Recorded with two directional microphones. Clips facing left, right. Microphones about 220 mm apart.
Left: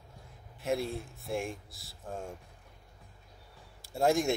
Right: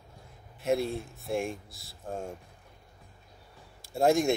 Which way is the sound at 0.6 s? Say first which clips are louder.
Right 4 dB; 25° right (ahead or behind).